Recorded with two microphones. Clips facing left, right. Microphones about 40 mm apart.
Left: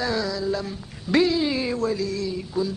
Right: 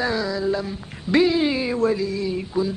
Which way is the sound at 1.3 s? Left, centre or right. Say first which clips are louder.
Right 3 dB; centre.